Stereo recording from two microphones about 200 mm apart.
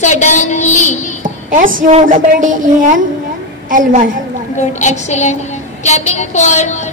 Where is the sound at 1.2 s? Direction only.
40° right (ahead or behind).